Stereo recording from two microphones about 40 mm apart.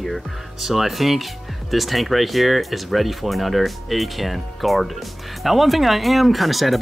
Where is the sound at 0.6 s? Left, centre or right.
Centre.